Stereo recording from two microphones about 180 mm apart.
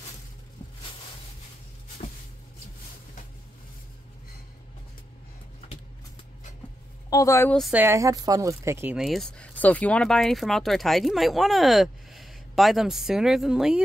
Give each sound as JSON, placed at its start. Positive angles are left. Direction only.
{"t": 7.1, "sound": "a woman's voice", "side_deg": 20}
{"t": 7.7, "sound": "speech", "side_deg": -15}
{"t": 8.9, "sound": "speech", "side_deg": 0}